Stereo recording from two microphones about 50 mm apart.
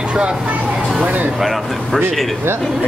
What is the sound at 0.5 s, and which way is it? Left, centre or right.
Speech, right.